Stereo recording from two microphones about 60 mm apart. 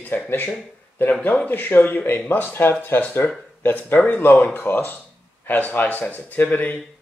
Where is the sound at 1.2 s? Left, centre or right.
Left.